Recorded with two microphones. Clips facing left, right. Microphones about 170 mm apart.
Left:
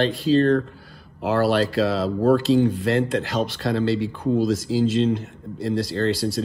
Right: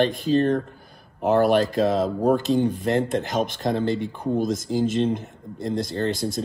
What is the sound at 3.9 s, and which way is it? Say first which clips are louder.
Speech: left 3 dB; 55° right (ahead or behind).